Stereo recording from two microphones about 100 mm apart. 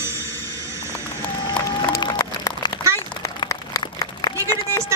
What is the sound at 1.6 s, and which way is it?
Music, 40° left (ahead or behind).